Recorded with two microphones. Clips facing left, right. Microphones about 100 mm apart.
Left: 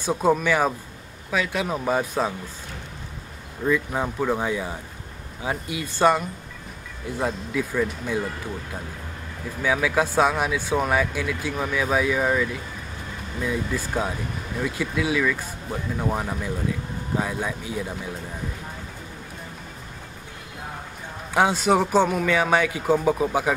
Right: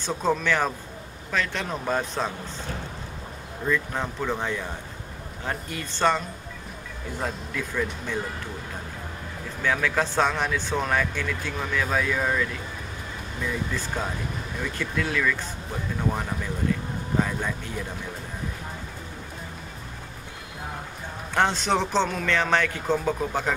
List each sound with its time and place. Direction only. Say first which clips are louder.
0.0 s speech: left 4 dB; 10° left (ahead or behind)
3.6 s speech: left 3 dB; 10° left (ahead or behind)
9.6 s speech: left 3 dB; 10° left (ahead or behind)
21.3 s speech: left 4 dB; 10° left (ahead or behind)